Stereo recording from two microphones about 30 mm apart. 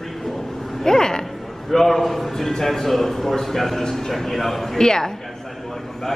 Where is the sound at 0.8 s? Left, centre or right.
Left.